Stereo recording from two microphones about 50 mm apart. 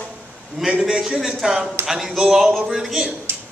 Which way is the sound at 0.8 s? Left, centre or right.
Centre.